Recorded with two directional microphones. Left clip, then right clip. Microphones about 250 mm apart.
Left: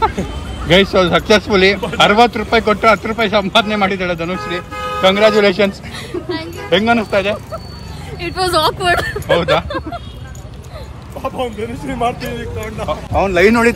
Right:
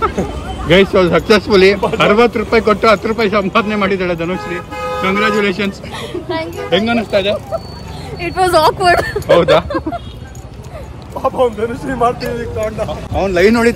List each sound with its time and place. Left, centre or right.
0.0 s speech: centre
11.4 s speech: centre
11.8 s speech: left
12.2 s speech: centre